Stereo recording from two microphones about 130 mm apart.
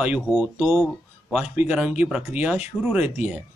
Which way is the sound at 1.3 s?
10° right (ahead or behind).